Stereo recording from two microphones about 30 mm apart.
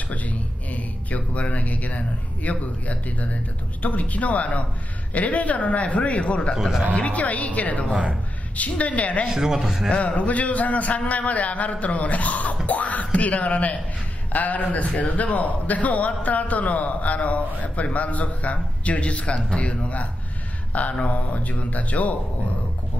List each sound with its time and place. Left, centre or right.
0.1 s a man's voice: left
7.1 s a man's voice: left
9.3 s speech: centre
9.8 s a man's voice: left
20.7 s a man's voice: left